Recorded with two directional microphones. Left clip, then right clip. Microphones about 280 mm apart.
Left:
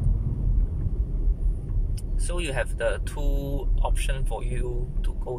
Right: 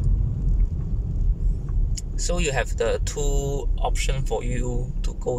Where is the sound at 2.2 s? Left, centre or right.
Centre.